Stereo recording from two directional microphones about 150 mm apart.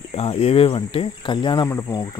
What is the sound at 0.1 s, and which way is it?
Speech, 40° left (ahead or behind).